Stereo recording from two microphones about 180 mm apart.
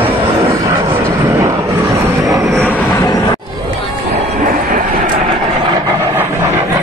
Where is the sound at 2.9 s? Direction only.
20° left (ahead or behind).